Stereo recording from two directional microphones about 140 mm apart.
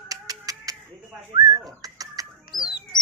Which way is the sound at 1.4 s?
30° right (ahead or behind).